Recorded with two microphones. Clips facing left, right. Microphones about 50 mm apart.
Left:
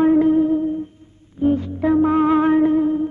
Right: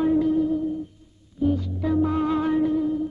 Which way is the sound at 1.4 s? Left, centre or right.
Left.